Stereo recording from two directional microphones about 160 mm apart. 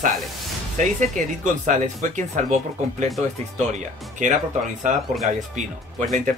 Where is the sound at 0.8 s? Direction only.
50° right (ahead or behind).